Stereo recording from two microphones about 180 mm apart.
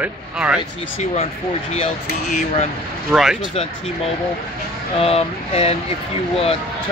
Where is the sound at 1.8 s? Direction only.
40° left (ahead or behind).